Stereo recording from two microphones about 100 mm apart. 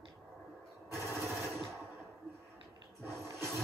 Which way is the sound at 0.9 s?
25° right (ahead or behind).